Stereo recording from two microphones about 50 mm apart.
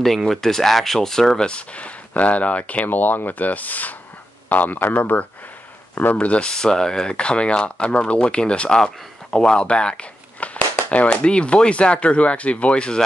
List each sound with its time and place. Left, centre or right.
0.3 s speech: centre
1.5 s speech: left
4.8 s speech: left
6.1 s speech: left